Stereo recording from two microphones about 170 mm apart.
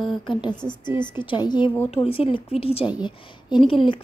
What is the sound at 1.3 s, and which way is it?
Speech, 25° left (ahead or behind).